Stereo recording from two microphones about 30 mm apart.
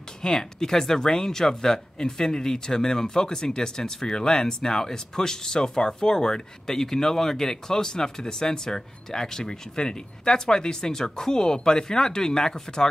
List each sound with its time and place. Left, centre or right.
0.2 s speech: centre